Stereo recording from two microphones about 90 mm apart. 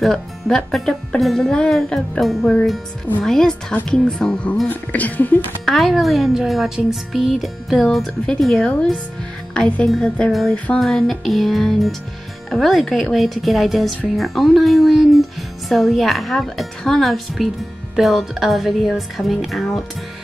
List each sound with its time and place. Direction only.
0.0 s speech: 5° left (ahead or behind)
5.7 s speech: centre (ahead or behind)